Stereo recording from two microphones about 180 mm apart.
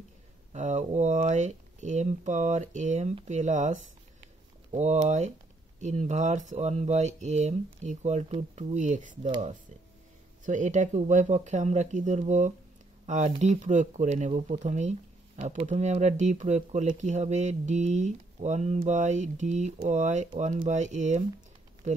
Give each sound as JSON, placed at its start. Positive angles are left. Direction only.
{"t": 0.5, "sound": "speech", "side_deg": -40}
{"t": 10.4, "sound": "speech", "side_deg": -45}